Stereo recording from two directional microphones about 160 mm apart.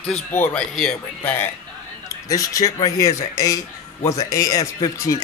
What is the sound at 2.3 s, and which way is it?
Speech, 20° left (ahead or behind).